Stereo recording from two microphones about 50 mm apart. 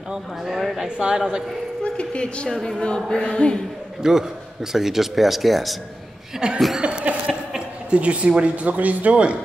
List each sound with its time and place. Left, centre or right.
0.1 s speech: centre
0.7 s a man's voice: centre
1.8 s a woman's voice: left
3.1 s a sound: centre
4.0 s a man's voice: centre
6.4 s a man's voice: centre
6.8 s chuckle: right
8.4 s speech: right